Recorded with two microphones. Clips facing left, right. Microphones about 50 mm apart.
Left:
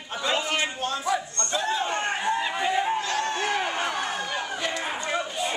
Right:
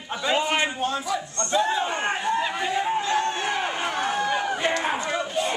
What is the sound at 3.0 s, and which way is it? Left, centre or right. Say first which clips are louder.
Crowd: right 2 dB; right.